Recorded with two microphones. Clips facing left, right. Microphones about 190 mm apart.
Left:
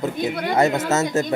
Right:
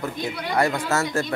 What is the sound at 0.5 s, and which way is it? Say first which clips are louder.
Speech: left 3 dB; 20° left (ahead or behind).